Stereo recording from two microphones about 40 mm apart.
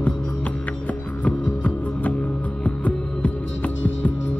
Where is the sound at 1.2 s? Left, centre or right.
Left.